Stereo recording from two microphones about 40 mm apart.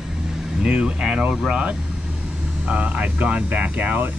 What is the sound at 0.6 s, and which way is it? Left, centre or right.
Speech, right.